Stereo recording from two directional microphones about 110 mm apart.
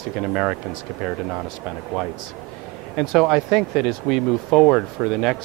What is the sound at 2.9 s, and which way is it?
Speech, centre (ahead or behind).